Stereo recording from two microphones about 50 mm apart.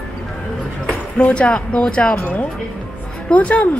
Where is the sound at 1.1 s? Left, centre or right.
Left.